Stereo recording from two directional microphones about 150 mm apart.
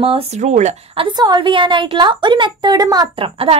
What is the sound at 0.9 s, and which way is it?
A woman's voice, 35° right (ahead or behind).